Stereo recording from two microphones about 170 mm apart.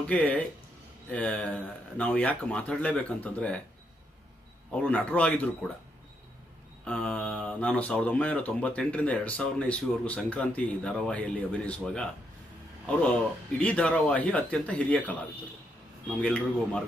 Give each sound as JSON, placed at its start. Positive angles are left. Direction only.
{"t": 0.0, "sound": "speech", "side_deg": 10}
{"t": 4.8, "sound": "speech", "side_deg": 10}
{"t": 6.8, "sound": "speech", "side_deg": 5}
{"t": 16.2, "sound": "a man's voice", "side_deg": 5}